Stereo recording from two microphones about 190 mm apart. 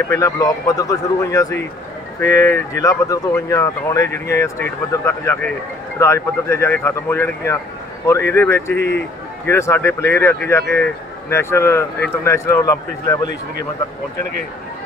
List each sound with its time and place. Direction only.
0.1 s speech: 15° left (ahead or behind)
8.7 s a man's voice: 65° left (ahead or behind)
9.5 s speech: 15° left (ahead or behind)